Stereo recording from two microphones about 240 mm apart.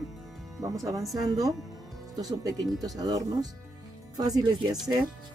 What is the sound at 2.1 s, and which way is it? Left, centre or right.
Speech, centre.